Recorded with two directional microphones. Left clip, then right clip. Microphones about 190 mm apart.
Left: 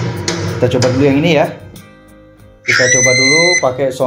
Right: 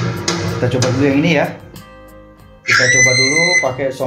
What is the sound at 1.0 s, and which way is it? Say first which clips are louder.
Speech: left 2 dB; 30° left (ahead or behind).